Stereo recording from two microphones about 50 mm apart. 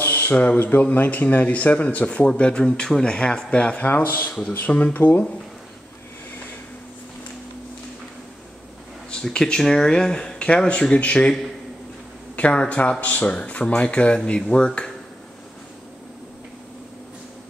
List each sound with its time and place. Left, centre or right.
0.0 s speech: left
3.9 s speech: left
9.1 s speech: centre
12.4 s speech: left